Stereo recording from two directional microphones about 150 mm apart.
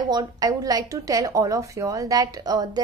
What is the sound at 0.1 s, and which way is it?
Speech, 25° right (ahead or behind).